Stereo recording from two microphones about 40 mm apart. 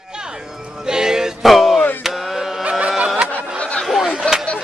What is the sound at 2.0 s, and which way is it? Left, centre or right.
Carnatic music, centre.